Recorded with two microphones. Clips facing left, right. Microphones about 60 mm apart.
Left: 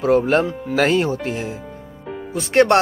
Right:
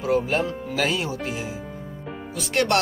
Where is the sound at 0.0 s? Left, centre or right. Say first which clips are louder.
Left 6 dB; left.